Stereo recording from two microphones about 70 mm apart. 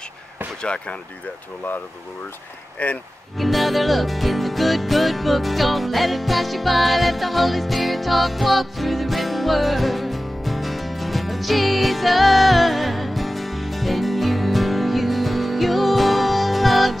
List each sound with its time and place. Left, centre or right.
0.6 s speech: centre
2.8 s speech: left
3.3 s music: centre